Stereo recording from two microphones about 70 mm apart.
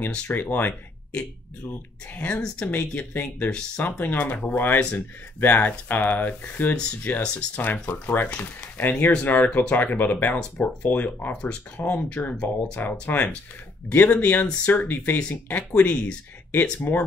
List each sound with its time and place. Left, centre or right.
0.3 s speech: left
2.1 s speech: centre